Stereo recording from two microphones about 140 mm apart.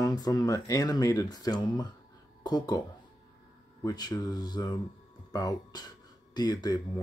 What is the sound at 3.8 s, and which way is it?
Speech, 25° left (ahead or behind).